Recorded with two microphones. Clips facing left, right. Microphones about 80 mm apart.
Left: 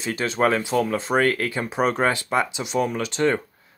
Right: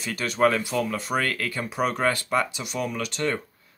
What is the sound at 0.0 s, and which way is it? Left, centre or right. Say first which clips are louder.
Speech: left 1 dB; left.